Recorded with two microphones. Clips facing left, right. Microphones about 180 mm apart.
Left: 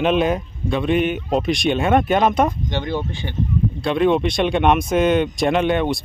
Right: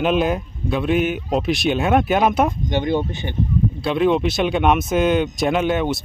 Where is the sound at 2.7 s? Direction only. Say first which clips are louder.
Right 4 dB; 20° right (ahead or behind).